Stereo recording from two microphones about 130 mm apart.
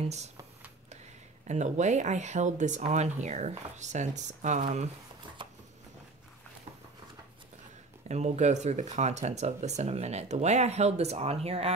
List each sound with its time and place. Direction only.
0.0 s speech: 60° right (ahead or behind)
1.5 s speech: 65° right (ahead or behind)
5.4 s a sound: 40° right (ahead or behind)
8.1 s speech: 60° right (ahead or behind)